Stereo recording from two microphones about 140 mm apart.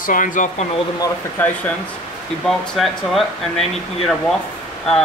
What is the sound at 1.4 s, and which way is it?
Speech, 15° left (ahead or behind).